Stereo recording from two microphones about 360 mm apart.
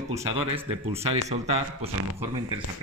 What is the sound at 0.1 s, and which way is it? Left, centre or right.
Speech, centre.